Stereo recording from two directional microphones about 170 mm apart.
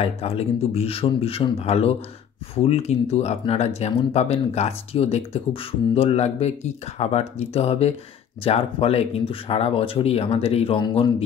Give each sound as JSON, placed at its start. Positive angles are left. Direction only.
{"t": 0.0, "sound": "speech", "side_deg": 35}